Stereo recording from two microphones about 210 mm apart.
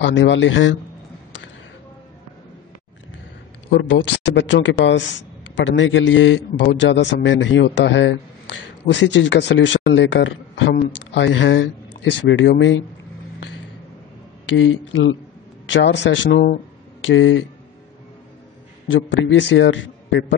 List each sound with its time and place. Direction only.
0.0 s a man's voice: 60° left (ahead or behind)
3.7 s a man's voice: 60° left (ahead or behind)
14.4 s a man's voice: 65° left (ahead or behind)
17.0 s a man's voice: 65° left (ahead or behind)
18.9 s a man's voice: 60° left (ahead or behind)